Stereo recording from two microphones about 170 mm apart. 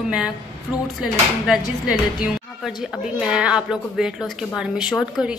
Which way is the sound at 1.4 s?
5° right (ahead or behind).